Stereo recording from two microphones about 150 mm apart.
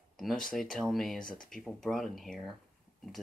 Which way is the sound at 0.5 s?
Centre (ahead or behind).